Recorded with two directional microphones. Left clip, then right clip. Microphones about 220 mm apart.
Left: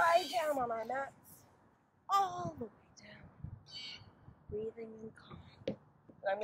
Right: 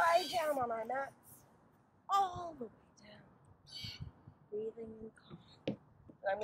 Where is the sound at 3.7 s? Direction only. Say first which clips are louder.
Even; 40° right (ahead or behind).